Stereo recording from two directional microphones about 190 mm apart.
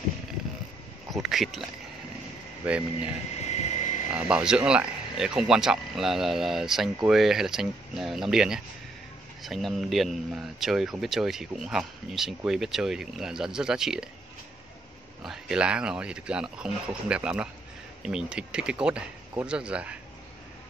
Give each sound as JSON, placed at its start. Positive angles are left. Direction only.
{"t": 1.1, "sound": "a sound", "side_deg": 0}
{"t": 2.6, "sound": "speech", "side_deg": -5}
{"t": 3.3, "sound": "vehicle", "side_deg": 35}
{"t": 4.1, "sound": "speech", "side_deg": -5}
{"t": 15.2, "sound": "speech", "side_deg": -5}